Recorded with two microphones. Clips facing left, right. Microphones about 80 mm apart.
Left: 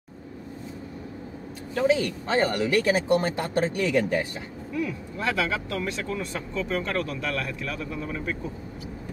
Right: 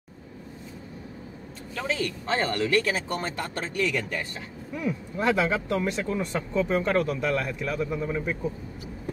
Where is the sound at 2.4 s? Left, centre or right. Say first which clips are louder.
Left 1 dB; centre.